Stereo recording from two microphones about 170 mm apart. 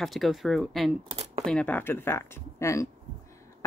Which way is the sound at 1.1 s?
40° right (ahead or behind).